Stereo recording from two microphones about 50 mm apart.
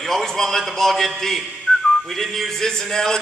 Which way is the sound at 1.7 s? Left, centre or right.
Left.